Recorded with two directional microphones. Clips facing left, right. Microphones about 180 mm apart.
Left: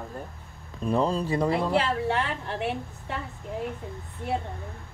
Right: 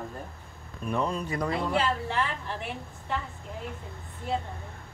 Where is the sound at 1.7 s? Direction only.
65° left (ahead or behind).